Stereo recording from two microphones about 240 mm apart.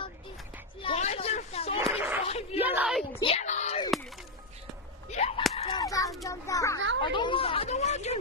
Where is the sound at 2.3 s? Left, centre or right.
Left.